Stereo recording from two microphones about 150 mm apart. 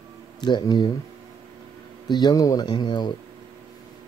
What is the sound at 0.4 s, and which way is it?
Speech, 30° left (ahead or behind).